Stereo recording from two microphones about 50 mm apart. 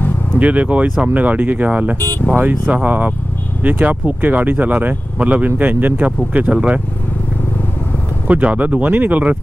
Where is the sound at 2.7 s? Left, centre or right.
Right.